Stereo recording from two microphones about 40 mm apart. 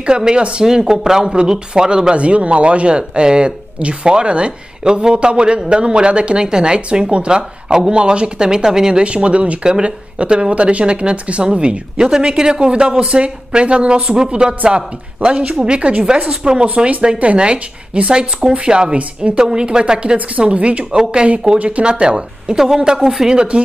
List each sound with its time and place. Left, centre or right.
0.0 s speech: right
0.7 s speech: centre
9.0 s speech: right
16.6 s speech: right
20.9 s speech: centre
21.5 s speech: right; by 23.4 s centre